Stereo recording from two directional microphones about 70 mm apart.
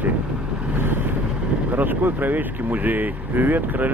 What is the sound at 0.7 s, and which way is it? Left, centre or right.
Vehicle, right.